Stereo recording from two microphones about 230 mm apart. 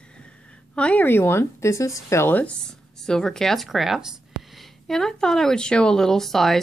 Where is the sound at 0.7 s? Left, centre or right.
Centre.